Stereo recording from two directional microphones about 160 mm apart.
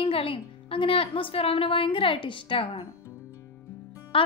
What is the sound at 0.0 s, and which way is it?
A woman's voice, 35° left (ahead or behind).